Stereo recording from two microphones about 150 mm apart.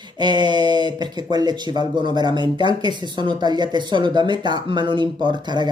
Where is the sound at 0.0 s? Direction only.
30° right (ahead or behind).